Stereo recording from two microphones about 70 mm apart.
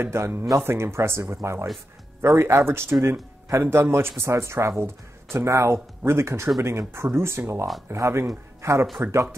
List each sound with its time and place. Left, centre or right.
0.0 s speech: right